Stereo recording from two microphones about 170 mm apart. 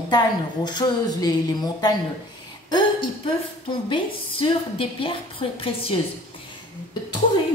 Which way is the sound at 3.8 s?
30° left (ahead or behind).